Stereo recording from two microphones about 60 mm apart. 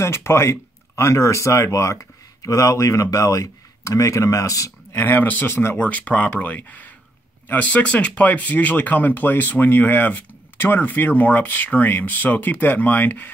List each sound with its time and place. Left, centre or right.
0.0 s speech: left
4.9 s speech: left
5.5 s speech: left
5.8 s speech: left